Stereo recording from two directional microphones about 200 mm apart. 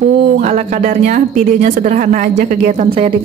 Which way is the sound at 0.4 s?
35° right (ahead or behind).